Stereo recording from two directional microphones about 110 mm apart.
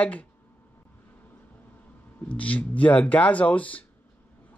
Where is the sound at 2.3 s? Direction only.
10° left (ahead or behind).